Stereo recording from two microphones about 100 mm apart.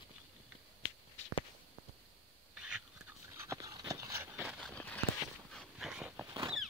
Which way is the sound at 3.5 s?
35° right (ahead or behind).